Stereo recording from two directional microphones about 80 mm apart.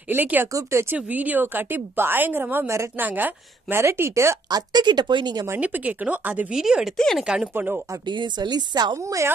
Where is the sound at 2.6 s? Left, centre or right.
Right.